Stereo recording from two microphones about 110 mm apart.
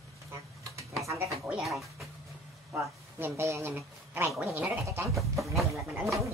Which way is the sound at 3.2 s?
20° right (ahead or behind).